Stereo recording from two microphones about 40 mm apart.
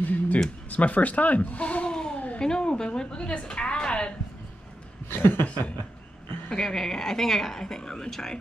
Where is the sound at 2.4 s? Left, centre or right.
Left.